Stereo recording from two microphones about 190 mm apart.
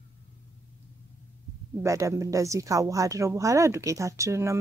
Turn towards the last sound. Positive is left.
turn(degrees=-15)  # may be behind; listen again after turning